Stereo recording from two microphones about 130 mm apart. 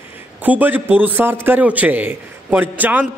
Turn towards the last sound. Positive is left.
turn(degrees=-15)  # may be behind; listen again after turning